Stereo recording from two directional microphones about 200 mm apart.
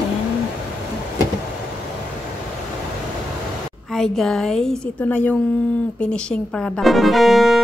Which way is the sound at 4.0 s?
5° left (ahead or behind).